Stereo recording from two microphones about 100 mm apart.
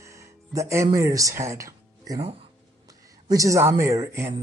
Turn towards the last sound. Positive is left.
turn(degrees=-30)  # may be behind; listen again after turning